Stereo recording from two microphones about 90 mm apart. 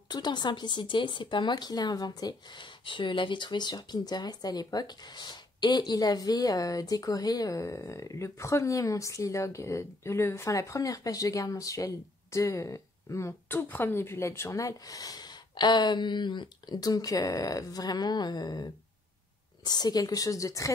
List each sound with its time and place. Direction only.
0.1 s speech: 55° left (ahead or behind); by 20.7 s 40° left (ahead or behind)